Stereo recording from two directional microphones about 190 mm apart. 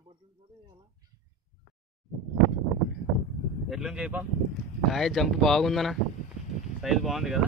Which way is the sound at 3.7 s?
5° right (ahead or behind).